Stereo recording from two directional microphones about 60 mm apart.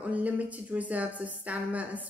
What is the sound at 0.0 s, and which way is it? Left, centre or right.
A woman's voice, right.